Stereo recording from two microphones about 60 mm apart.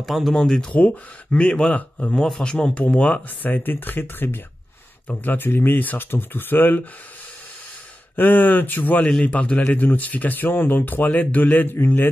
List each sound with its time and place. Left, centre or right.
0.0 s speech: centre
0.4 s speech: centre
3.4 s speech: left
8.2 s speech: left